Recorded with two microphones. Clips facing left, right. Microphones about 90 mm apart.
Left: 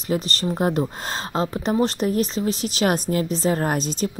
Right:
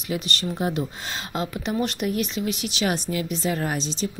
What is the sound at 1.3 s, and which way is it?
A woman's voice, 35° left (ahead or behind).